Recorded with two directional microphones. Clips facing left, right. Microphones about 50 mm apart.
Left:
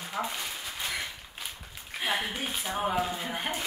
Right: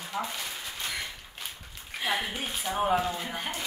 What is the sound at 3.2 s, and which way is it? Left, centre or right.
Speech, centre.